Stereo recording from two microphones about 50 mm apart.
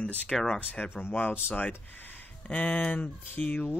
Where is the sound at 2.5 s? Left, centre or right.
Left.